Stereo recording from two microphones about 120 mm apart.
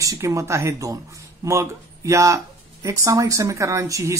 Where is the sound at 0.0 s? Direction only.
25° right (ahead or behind).